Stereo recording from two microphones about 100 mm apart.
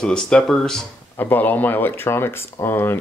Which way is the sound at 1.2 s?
20° left (ahead or behind).